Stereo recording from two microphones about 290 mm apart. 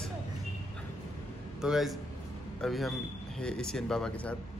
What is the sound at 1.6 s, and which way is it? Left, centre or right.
Speech, centre.